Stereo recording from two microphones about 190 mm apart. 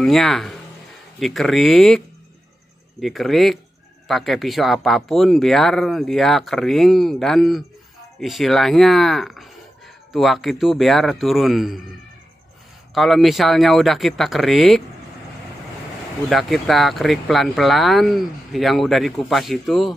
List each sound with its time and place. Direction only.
0.0 s speech: centre (ahead or behind)
12.9 s speech: centre (ahead or behind)
16.3 s speech: centre (ahead or behind)